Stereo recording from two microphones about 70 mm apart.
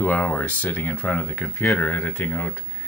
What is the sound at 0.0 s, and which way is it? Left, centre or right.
Speech, left.